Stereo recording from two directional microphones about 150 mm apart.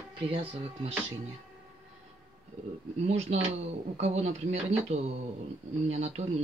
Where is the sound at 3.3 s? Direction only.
45° right (ahead or behind).